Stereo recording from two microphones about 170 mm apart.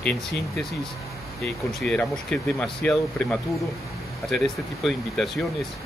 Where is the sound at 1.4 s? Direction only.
5° left (ahead or behind).